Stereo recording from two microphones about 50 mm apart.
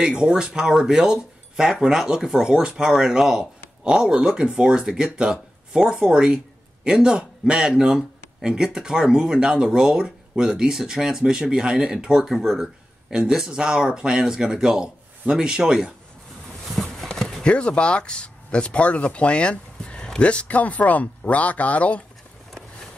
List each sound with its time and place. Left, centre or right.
0.0 s a man's voice: centre
16.6 s a sound: centre
17.4 s speech: left